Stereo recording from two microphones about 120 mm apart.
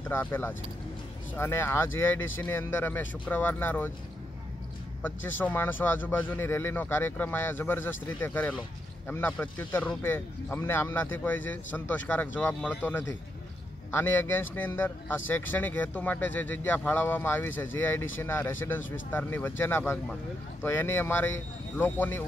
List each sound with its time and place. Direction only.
0.1 s a man's voice: 15° left (ahead or behind)
5.0 s a man's voice: 15° left (ahead or behind)